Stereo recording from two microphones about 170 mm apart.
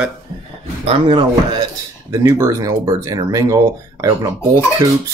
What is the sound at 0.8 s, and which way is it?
Speech, 30° right (ahead or behind).